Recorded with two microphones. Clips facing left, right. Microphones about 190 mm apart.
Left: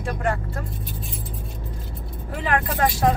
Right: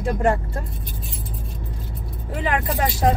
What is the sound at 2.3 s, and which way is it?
Speech, 20° right (ahead or behind).